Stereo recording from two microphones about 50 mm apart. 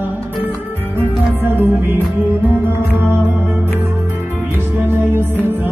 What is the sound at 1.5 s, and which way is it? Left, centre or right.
Music, right.